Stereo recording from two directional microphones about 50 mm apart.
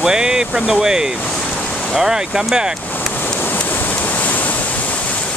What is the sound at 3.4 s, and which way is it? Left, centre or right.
Waves, left.